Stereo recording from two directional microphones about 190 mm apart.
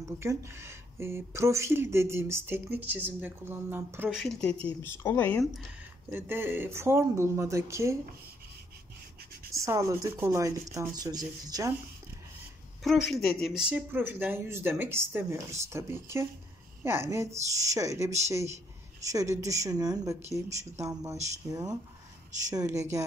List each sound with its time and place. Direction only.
0.2 s speech: 15° right (ahead or behind)
4.2 s speech: centre (ahead or behind)
6.0 s speech: 10° right (ahead or behind)
9.5 s speech: 15° right (ahead or behind)
13.1 s speech: centre (ahead or behind); by 22.8 s 15° right (ahead or behind)